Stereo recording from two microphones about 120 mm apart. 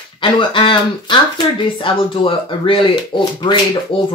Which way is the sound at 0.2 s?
40° left (ahead or behind).